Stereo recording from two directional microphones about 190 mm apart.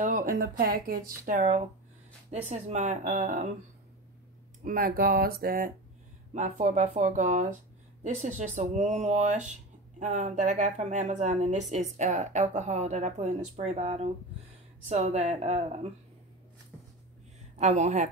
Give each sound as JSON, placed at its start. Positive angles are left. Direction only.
{"t": 0.0, "sound": "speech", "side_deg": -45}
{"t": 4.6, "sound": "speech", "side_deg": -50}
{"t": 17.6, "sound": "speech", "side_deg": -35}